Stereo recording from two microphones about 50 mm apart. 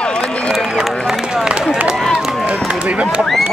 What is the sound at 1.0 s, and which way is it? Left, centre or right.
Run, centre.